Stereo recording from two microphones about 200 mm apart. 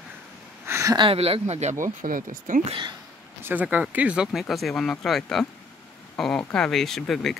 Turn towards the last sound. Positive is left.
turn(degrees=0)  # may be behind; listen again after turning